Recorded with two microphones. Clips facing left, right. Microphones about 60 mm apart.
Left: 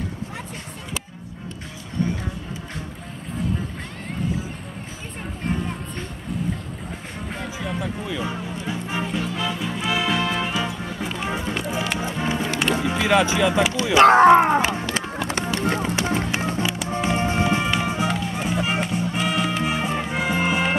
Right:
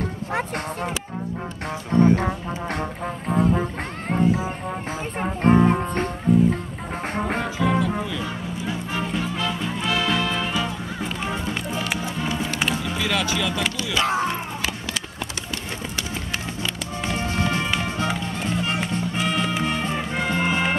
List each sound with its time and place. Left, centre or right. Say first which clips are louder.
2.0 s speech: right 9 dB; right
3.3 s music: right 7 dB; right
6.3 s music: right 12 dB; centre
7.2 s music: right 9 dB; right
7.8 s music: right 2 dB; centre
8.6 s music: even; centre
12.4 s music: left 3 dB; centre
12.8 s speech: left 5 dB; centre
13.9 s a sound: left 13 dB; left
15.5 s music: left 8 dB; left
16.3 s music: left 6 dB; left
16.9 s music: left 4 dB; left; by 20.7 s centre